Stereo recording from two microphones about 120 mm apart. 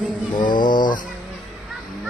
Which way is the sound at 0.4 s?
40° left (ahead or behind).